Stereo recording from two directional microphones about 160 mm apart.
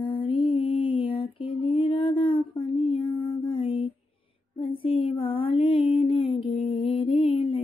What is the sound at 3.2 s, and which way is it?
Mantra, 30° left (ahead or behind).